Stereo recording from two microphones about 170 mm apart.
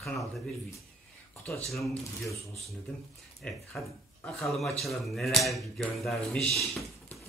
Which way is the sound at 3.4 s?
5° left (ahead or behind).